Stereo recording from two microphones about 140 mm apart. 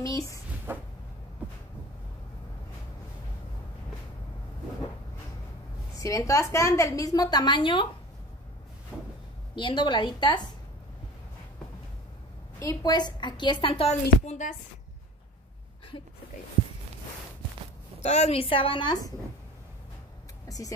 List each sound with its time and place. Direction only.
0.0 s speech: 25° left (ahead or behind)
0.7 s cupboard open or close: 15° right (ahead or behind)
5.9 s a woman's voice: 25° left (ahead or behind)
8.9 s cupboard open or close: 5° right (ahead or behind)
9.6 s a woman's voice: 35° left (ahead or behind)
12.5 s a woman's voice: 25° left (ahead or behind)
14.2 s speech: 60° left (ahead or behind)
18.0 s a woman's voice: 50° left (ahead or behind); by 19.1 s 30° left (ahead or behind)
20.4 s vehicle: 25° left (ahead or behind)